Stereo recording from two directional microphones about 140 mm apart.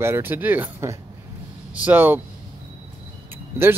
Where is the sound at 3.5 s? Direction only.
20° right (ahead or behind).